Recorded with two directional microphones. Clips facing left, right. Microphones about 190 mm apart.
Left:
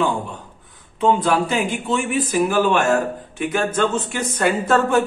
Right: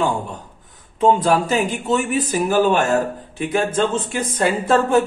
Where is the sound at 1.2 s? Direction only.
40° right (ahead or behind).